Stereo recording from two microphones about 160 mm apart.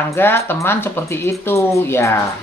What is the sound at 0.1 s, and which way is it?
A woman's voice, 15° left (ahead or behind).